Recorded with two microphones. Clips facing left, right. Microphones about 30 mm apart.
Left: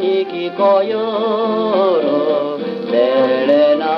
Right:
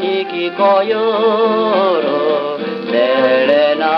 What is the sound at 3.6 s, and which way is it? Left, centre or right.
Music, centre.